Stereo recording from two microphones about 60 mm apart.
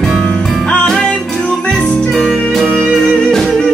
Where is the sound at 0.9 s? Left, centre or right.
Centre.